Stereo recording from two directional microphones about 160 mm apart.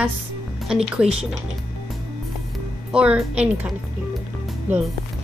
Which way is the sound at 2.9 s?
5° right (ahead or behind).